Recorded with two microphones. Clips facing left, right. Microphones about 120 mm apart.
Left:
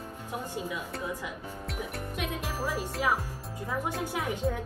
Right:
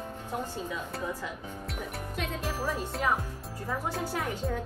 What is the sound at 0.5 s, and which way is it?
Speech, 15° left (ahead or behind).